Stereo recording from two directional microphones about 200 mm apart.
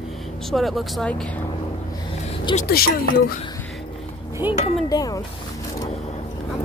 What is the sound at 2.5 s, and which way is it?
Speech, 45° left (ahead or behind).